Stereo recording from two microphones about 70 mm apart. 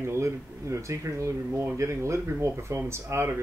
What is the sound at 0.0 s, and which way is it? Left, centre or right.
Speech, right.